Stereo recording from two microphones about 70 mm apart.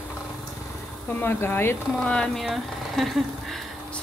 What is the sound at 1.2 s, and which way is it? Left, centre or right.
Speech, left.